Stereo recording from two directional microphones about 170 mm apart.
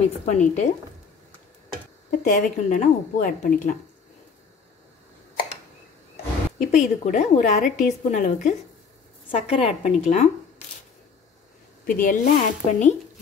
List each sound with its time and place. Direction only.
0.2 s speech: 45° left (ahead or behind)
2.0 s speech: 50° left (ahead or behind)
6.6 s a woman's voice: 45° left (ahead or behind)
11.8 s speech: 55° left (ahead or behind)